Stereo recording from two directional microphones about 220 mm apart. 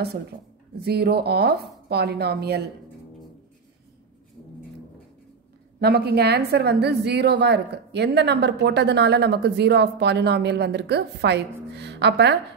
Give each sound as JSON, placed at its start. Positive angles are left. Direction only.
{"t": 0.7, "sound": "a woman's voice", "side_deg": -45}
{"t": 5.8, "sound": "a woman's voice", "side_deg": -45}